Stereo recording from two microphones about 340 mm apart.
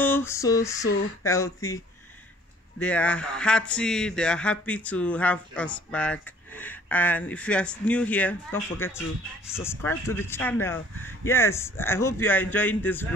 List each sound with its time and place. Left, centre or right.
0.0 s a sound: centre
1.2 s speech: centre
2.8 s speech: centre